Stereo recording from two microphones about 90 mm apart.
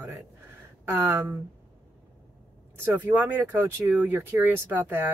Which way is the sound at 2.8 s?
20° right (ahead or behind).